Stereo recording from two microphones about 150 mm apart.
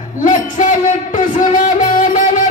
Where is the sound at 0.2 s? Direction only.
60° left (ahead or behind).